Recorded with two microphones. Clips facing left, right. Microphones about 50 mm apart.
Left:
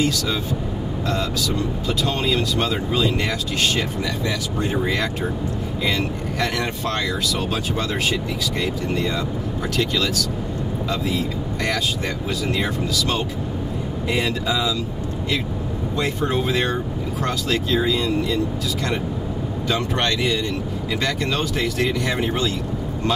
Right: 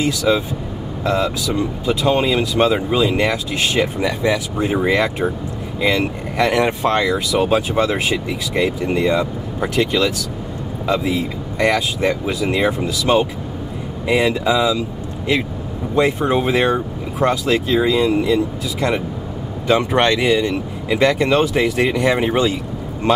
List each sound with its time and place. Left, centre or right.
0.0 s speech: centre
4.6 s speech: centre
16.0 s speech: centre
23.1 s a man's voice: right